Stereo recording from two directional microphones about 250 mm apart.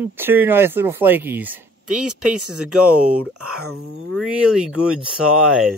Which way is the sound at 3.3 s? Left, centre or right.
Right.